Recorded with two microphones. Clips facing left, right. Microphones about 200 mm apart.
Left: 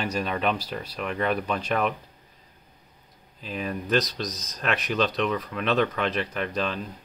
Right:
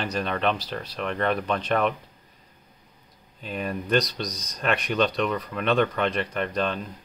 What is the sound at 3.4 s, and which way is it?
Speech, centre (ahead or behind).